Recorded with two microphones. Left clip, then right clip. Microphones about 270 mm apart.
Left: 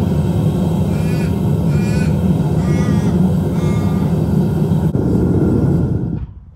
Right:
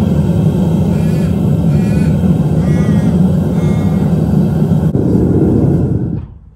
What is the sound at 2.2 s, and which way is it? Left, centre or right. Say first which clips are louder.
Vehicle: right 3 dB; centre.